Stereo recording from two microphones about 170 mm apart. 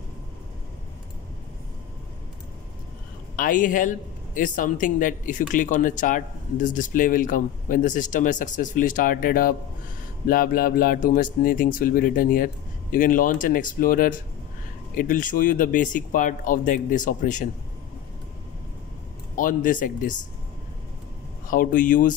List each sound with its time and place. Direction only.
3.3 s speech: 50° left (ahead or behind)
19.3 s speech: 50° left (ahead or behind)
21.5 s speech: 50° left (ahead or behind)